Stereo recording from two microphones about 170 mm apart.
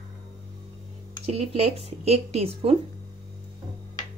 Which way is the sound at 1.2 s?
35° right (ahead or behind).